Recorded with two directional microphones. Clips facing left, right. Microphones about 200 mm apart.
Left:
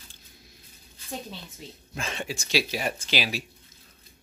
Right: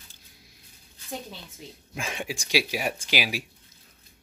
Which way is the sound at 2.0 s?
10° right (ahead or behind).